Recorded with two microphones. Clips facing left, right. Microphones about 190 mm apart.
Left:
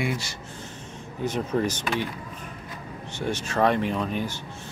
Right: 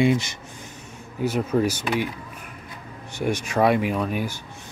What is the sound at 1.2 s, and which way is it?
Speech, 5° right (ahead or behind).